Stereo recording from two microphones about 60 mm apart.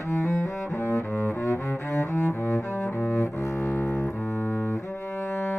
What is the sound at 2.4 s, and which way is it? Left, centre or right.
Cello, left.